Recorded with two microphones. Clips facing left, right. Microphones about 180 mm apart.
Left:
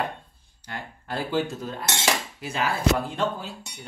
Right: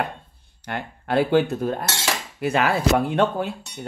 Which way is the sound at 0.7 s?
65° right (ahead or behind).